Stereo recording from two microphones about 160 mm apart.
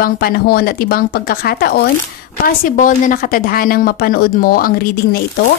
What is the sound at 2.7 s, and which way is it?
A woman's voice, 55° left (ahead or behind).